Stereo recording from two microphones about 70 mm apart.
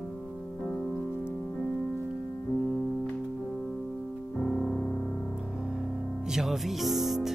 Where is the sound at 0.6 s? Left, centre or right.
Centre.